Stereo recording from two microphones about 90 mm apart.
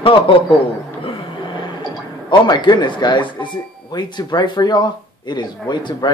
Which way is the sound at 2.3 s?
55° left (ahead or behind).